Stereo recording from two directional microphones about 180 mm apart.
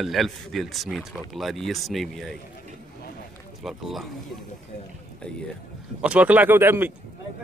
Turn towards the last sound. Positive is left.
turn(degrees=-10)  # may be behind; listen again after turning